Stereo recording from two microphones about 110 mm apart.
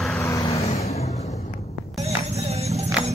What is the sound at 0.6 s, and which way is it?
Vehicle, 70° left (ahead or behind).